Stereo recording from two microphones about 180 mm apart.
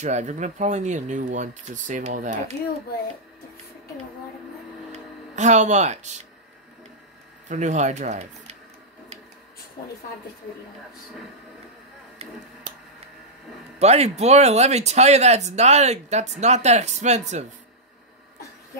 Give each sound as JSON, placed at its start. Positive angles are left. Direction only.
{"t": 0.0, "sound": "speech", "side_deg": -40}
{"t": 4.9, "sound": "speech", "side_deg": -40}
{"t": 7.4, "sound": "speech", "side_deg": -40}
{"t": 12.7, "sound": "a sound", "side_deg": -45}
{"t": 13.7, "sound": "speech", "side_deg": -35}